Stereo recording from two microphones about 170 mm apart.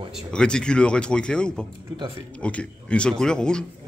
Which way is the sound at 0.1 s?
5° left (ahead or behind).